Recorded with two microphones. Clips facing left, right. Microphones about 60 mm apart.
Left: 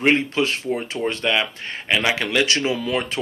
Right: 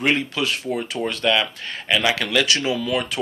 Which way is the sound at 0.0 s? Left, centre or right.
Left.